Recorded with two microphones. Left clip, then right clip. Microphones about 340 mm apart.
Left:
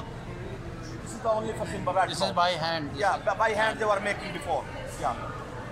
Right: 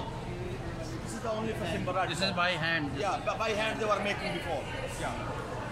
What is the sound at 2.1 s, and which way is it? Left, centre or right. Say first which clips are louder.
A man's voice: left 4 dB; centre.